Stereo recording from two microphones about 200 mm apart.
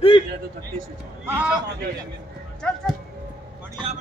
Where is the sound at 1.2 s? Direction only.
5° right (ahead or behind).